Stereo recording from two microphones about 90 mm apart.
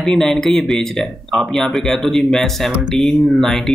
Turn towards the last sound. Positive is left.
turn(degrees=5)  # may be behind; listen again after turning